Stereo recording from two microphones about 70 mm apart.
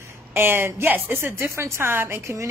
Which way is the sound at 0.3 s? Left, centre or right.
Right.